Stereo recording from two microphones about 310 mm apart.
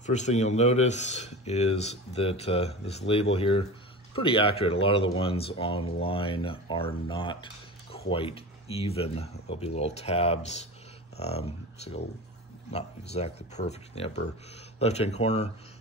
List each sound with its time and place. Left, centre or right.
0.0 s speech: left